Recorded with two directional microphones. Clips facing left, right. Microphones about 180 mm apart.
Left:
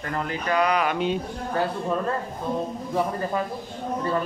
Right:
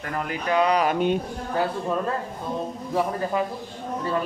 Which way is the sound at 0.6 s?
35° right (ahead or behind).